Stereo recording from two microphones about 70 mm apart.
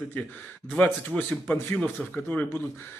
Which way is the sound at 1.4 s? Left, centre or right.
Centre.